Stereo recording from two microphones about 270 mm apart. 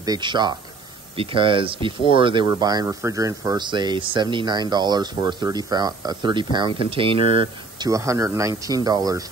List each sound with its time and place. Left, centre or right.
0.0 s speech: centre